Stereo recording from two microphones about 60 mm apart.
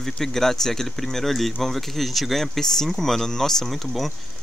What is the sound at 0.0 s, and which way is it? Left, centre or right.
Speech, centre.